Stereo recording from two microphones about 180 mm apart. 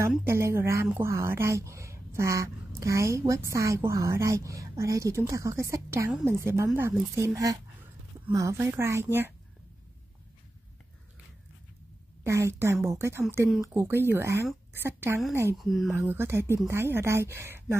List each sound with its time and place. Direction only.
0.2 s speech: 15° right (ahead or behind)
12.2 s speech: 15° right (ahead or behind)
15.5 s speech: centre (ahead or behind)
15.9 s speech: 15° right (ahead or behind)